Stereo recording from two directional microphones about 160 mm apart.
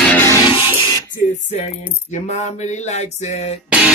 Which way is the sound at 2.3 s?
45° left (ahead or behind).